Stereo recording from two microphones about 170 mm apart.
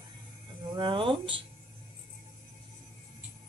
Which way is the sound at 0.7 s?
30° right (ahead or behind).